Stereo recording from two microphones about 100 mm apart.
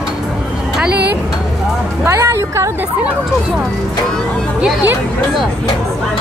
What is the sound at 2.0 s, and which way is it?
Music, 25° right (ahead or behind).